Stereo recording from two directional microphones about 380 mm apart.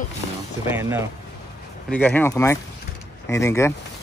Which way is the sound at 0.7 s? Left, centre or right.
Centre.